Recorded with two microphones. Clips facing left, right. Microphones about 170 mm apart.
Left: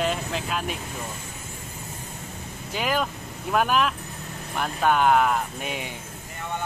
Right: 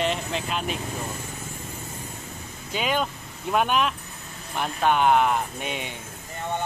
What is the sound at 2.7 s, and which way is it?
Speech, centre (ahead or behind).